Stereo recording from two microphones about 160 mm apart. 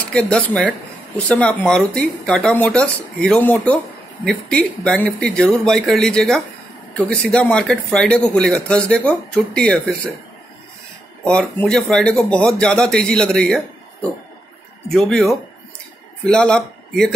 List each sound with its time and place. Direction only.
0.0 s speech: 5° left (ahead or behind)
11.2 s speech: 5° left (ahead or behind)
14.9 s speech: centre (ahead or behind)